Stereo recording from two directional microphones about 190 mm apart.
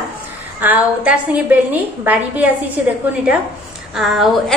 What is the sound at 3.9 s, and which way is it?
Speech, centre (ahead or behind).